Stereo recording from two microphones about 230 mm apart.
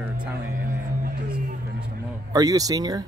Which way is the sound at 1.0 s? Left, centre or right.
Right.